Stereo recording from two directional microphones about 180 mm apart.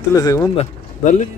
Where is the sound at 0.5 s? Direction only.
40° left (ahead or behind).